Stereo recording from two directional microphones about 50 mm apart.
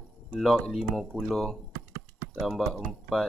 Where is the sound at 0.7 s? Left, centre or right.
Centre.